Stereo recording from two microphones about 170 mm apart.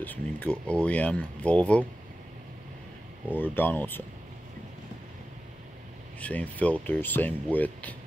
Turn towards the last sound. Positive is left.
turn(degrees=10)  # may be behind; listen again after turning